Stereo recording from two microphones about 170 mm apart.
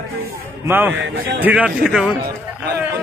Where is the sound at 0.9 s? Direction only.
90° right.